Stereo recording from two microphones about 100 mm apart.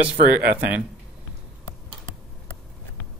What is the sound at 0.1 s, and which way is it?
Speech, 15° right (ahead or behind).